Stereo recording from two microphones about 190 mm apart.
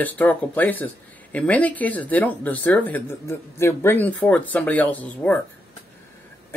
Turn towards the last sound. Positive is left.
turn(degrees=10)  # may be behind; listen again after turning